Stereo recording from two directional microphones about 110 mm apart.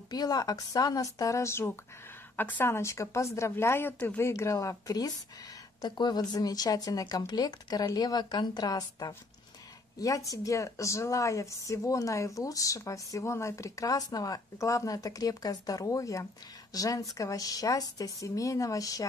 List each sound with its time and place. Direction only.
0.1 s a woman's voice: 35° left (ahead or behind); by 4.3 s 15° left (ahead or behind)
4.3 s a woman's voice: 30° left (ahead or behind)